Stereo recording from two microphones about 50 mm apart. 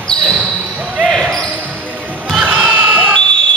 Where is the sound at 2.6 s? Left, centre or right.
Right.